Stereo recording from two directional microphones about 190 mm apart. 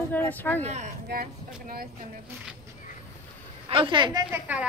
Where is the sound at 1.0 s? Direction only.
55° right (ahead or behind).